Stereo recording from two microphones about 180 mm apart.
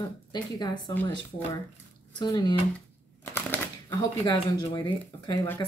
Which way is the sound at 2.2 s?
25° left (ahead or behind).